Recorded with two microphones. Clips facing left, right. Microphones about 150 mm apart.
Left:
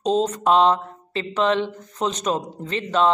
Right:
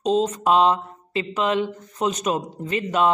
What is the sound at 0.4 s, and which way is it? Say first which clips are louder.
Speech: left 1 dB; 5° right (ahead or behind).